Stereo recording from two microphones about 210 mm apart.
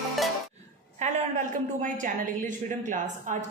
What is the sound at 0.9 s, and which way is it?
A woman's voice, 35° right (ahead or behind).